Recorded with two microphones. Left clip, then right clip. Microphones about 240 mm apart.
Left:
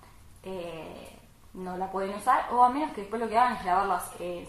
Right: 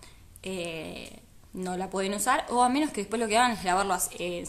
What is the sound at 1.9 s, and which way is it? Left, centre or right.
Speech, right.